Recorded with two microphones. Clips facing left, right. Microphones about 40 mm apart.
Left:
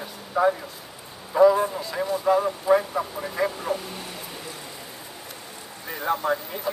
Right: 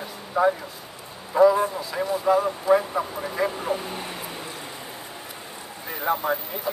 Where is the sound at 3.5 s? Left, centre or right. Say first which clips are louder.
Right 1 dB; centre.